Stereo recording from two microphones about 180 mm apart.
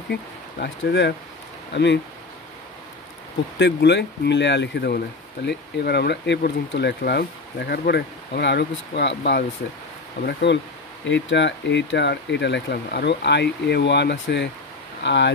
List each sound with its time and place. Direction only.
0.1 s speech: 70° left (ahead or behind)
3.5 s speech: 75° left (ahead or behind)
11.1 s speech: 85° left